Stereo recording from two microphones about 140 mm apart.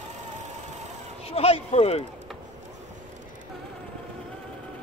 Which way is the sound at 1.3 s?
45° left (ahead or behind).